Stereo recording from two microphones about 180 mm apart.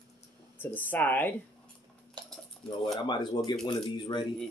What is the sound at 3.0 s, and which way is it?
Speech, 25° left (ahead or behind).